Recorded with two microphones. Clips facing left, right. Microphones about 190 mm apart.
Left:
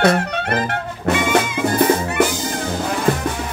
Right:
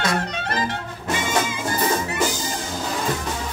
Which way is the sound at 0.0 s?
60° left (ahead or behind).